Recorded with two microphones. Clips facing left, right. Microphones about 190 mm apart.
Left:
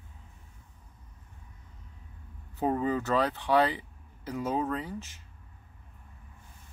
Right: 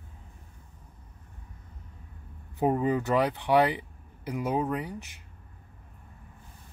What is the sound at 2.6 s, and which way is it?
Speech, 15° right (ahead or behind).